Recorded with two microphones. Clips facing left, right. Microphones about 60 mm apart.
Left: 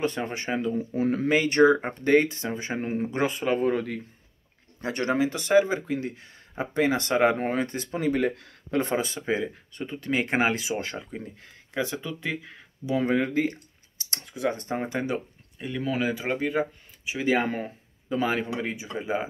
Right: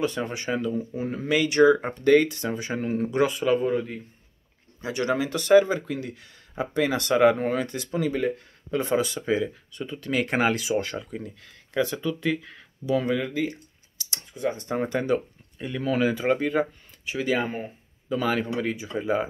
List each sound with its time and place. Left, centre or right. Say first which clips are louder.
0.0 s speech: right 1 dB; left
0.9 s speech: left 5 dB; left
1.3 s speech: right 2 dB; left
3.6 s speech: even; left
4.8 s speech: right 1 dB; left
5.1 s speech: right 3 dB; left
5.9 s speech: left 2 dB; left
8.1 s speech: left 1 dB; left
8.9 s speech: right 3 dB; left
13.0 s speech: left 2 dB; left
14.2 s speech: even; left
14.8 s speech: right 4 dB; centre
15.6 s speech: right 3 dB; centre
18.1 s speech: right 1 dB; left